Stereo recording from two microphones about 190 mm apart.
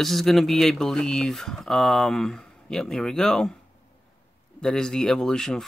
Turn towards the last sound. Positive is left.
turn(degrees=5)  # may be behind; listen again after turning